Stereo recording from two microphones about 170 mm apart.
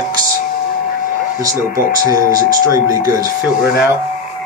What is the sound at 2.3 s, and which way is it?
Speech, 20° right (ahead or behind).